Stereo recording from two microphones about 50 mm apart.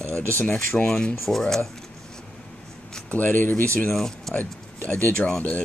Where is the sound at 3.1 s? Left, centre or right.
Left.